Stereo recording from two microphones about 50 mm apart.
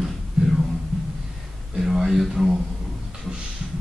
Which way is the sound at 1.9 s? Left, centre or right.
Centre.